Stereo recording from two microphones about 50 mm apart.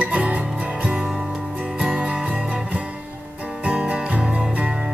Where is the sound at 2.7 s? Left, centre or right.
Right.